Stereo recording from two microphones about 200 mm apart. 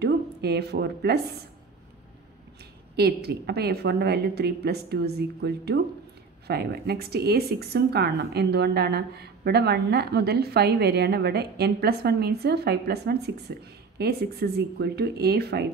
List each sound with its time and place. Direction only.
0.0 s speech: 55° right (ahead or behind)
3.0 s a woman's voice: 55° right (ahead or behind)